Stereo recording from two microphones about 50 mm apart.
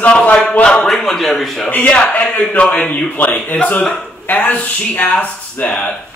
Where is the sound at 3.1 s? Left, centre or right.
Left.